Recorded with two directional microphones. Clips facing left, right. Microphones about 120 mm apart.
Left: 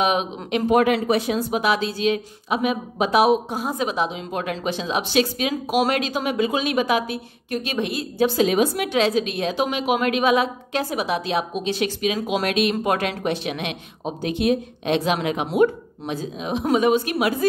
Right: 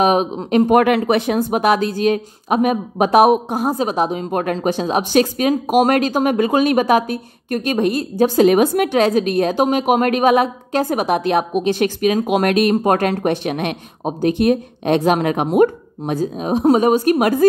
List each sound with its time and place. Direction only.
0.0 s speech: 40° right (ahead or behind)
0.7 s speech: 60° right (ahead or behind); by 17.5 s 45° right (ahead or behind)